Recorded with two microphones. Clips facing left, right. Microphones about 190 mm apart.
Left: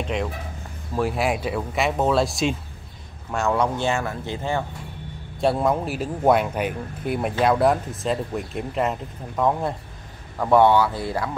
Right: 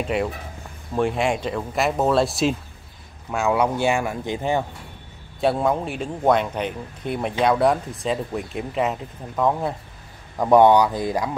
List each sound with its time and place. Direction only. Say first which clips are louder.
0.0 s speech: right 3 dB; 5° right (ahead or behind)
5.4 s speech: even; centre (ahead or behind)
10.3 s speech: right 2 dB; 15° right (ahead or behind)